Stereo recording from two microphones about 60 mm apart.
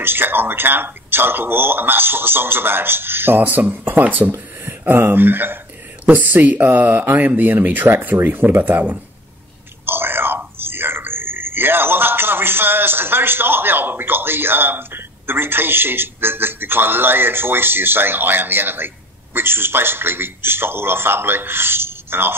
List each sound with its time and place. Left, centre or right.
0.0 s speech: right